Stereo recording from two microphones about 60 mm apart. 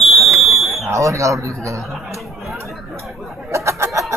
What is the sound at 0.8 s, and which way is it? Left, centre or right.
Speech, right.